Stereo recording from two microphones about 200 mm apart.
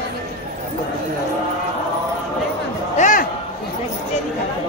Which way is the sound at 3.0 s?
40° left (ahead or behind).